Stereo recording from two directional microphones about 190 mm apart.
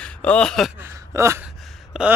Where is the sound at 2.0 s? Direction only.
5° right (ahead or behind).